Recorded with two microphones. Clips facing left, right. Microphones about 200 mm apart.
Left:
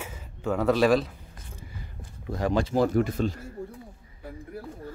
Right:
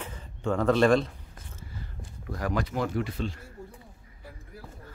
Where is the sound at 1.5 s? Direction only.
20° left (ahead or behind); by 3.4 s 45° left (ahead or behind).